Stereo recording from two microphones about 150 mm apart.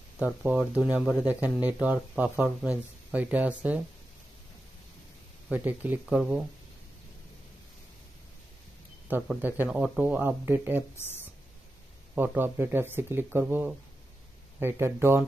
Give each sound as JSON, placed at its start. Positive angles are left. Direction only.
{"t": 0.2, "sound": "speech", "side_deg": -5}
{"t": 5.5, "sound": "speech", "side_deg": -10}
{"t": 9.3, "sound": "speech", "side_deg": -10}
{"t": 11.0, "sound": "speech", "side_deg": 15}
{"t": 12.2, "sound": "speech", "side_deg": -15}